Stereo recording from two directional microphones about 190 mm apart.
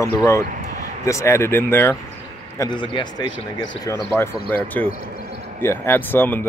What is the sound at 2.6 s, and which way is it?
Speech, 25° left (ahead or behind).